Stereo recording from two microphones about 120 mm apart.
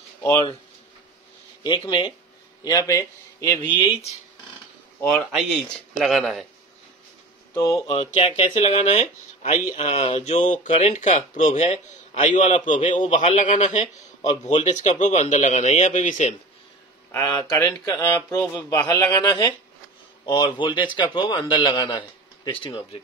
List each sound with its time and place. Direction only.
1.6 s a man's voice: 40° left (ahead or behind)
2.6 s a man's voice: 30° left (ahead or behind)
5.3 s speech: 5° right (ahead or behind)
7.5 s a man's voice: 25° left (ahead or behind)
8.1 s speech: 50° left (ahead or behind)
8.5 s a man's voice: 65° left (ahead or behind); by 9.8 s 85° left
9.8 s speech: 55° left (ahead or behind); by 10.7 s 90° left
10.7 s a man's voice: 70° left (ahead or behind)
14.5 s a man's voice: 70° left (ahead or behind); by 16.3 s 85° left
17.1 s a man's voice: 25° left (ahead or behind)
20.2 s a man's voice: 40° left (ahead or behind)